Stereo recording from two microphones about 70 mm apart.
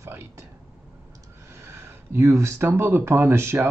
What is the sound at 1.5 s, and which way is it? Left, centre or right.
Speech, right.